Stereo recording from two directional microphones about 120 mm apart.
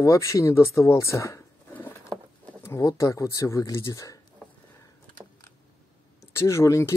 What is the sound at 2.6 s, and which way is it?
Speech, 25° left (ahead or behind).